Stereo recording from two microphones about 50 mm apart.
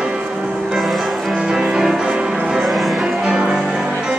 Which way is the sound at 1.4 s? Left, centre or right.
Centre.